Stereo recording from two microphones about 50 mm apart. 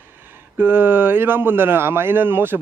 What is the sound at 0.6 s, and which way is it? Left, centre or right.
Speech, right.